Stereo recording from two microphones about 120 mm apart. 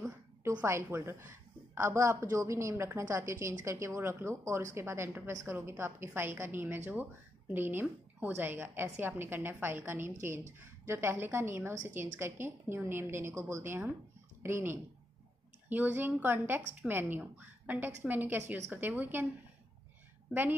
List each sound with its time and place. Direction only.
0.6 s a woman's voice: 20° right (ahead or behind)